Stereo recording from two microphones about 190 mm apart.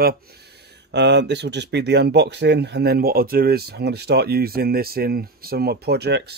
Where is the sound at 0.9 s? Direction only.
65° right (ahead or behind).